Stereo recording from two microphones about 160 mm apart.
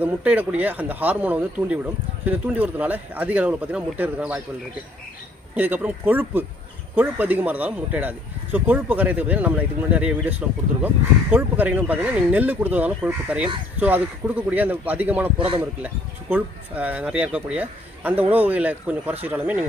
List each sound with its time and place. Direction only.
0.0 s speech: 10° right (ahead or behind)
5.6 s speech: 10° right (ahead or behind)
15.3 s speech: 35° right (ahead or behind)
15.6 s speech: 10° right (ahead or behind)